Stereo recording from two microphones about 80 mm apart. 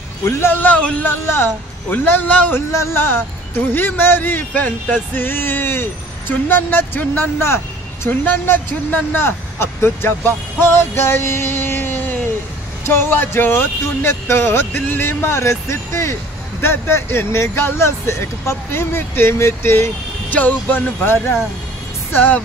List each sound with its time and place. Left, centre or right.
0.2 s speech: left
1.2 s speech: left
2.7 s speech: left